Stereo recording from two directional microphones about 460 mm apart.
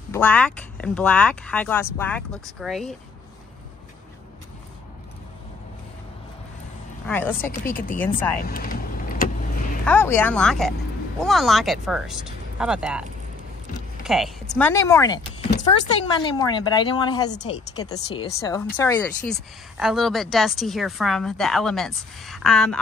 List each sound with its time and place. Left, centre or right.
0.1 s speech: centre
7.1 s speech: centre
7.5 s speech: centre
8.0 s speech: centre
8.4 s vehicle: centre
9.8 s speech: centre
14.0 s speech: centre